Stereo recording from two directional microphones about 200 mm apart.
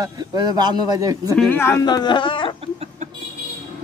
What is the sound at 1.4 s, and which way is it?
Speech, 10° left (ahead or behind).